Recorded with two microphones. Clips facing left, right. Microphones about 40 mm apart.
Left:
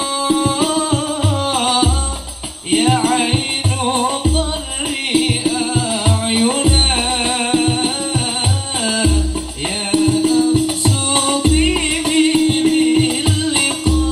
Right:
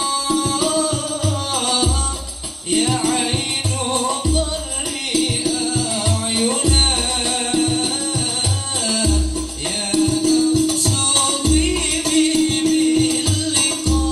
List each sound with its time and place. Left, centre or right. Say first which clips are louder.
0.3 s music: left 4 dB; left